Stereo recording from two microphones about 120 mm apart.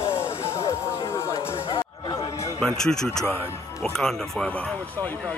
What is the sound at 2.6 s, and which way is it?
Speech, 5° left (ahead or behind).